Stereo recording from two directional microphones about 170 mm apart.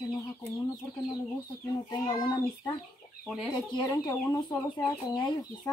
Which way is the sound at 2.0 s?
25° left (ahead or behind).